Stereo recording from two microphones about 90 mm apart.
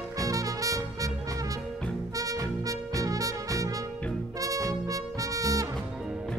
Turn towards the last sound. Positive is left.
turn(degrees=-40)  # may be behind; listen again after turning